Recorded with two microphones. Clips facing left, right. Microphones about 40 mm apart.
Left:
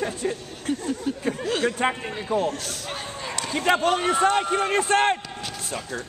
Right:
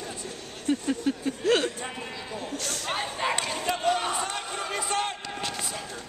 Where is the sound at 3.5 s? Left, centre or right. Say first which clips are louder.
Left 6 dB; left.